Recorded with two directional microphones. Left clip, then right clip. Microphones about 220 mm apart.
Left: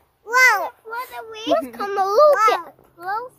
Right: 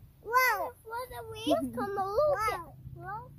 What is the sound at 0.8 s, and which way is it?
Speech, 40° right (ahead or behind).